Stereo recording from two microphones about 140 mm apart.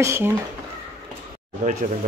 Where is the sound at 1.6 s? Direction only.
65° right (ahead or behind).